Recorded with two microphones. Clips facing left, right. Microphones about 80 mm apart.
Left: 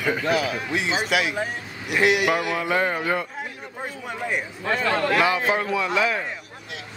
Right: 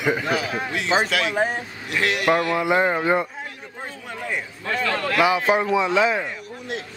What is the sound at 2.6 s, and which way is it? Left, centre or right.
Speech, centre.